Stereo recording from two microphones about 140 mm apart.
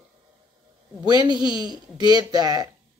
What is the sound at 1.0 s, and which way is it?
Speech, 30° right (ahead or behind).